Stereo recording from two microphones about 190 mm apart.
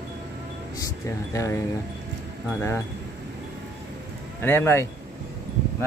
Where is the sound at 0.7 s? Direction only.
15° left (ahead or behind).